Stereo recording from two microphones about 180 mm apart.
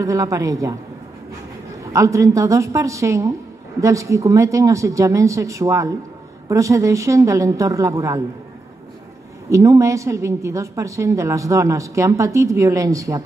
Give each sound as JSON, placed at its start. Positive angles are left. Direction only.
{"t": 0.0, "sound": "a woman's voice", "side_deg": -20}
{"t": 1.9, "sound": "a woman's voice", "side_deg": -15}
{"t": 9.5, "sound": "a woman's voice", "side_deg": -15}